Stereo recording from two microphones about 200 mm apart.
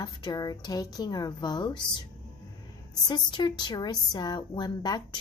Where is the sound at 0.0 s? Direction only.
20° left (ahead or behind).